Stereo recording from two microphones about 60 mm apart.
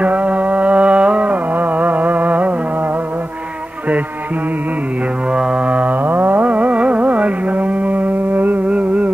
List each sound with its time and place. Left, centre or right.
0.0 s music: right
5.7 s carnatic music: right